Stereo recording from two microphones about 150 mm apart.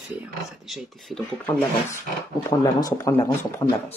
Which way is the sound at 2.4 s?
20° left (ahead or behind).